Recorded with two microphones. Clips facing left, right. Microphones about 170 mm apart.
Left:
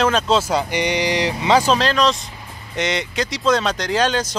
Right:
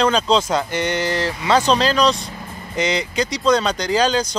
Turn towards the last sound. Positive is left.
turn(degrees=0)  # may be behind; listen again after turning